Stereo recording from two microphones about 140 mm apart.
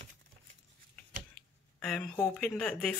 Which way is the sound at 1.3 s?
5° left (ahead or behind).